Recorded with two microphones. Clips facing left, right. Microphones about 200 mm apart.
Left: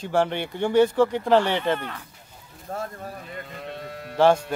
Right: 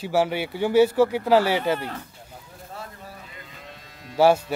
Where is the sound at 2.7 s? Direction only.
50° left (ahead or behind).